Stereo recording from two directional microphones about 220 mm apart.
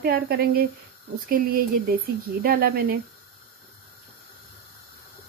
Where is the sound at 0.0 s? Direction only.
45° right (ahead or behind).